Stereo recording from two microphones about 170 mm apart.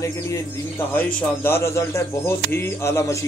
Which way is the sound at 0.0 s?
15° left (ahead or behind).